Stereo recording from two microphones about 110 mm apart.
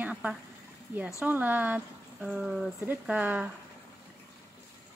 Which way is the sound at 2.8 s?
15° right (ahead or behind).